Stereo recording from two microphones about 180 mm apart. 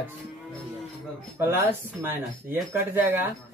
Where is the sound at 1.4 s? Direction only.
10° right (ahead or behind).